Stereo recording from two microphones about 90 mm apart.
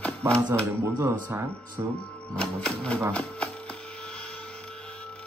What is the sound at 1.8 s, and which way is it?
Speech, 35° right (ahead or behind).